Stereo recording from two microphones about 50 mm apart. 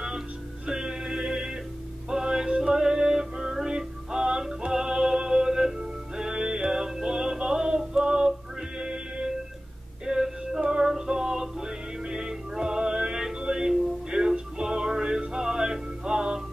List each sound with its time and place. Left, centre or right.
0.7 s music: centre